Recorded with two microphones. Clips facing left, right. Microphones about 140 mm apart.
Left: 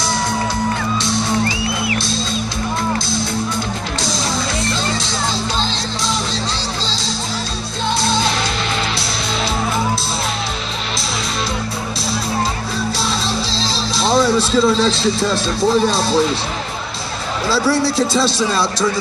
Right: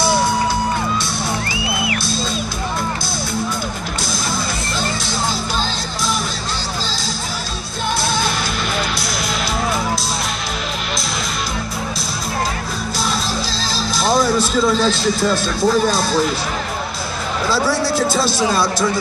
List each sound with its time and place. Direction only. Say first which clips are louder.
1.9 s music: left 2 dB; 25° left (ahead or behind)
13.5 s speech: left 1 dB; 30° left (ahead or behind)
17.5 s a man's voice: left 2 dB; 30° left (ahead or behind)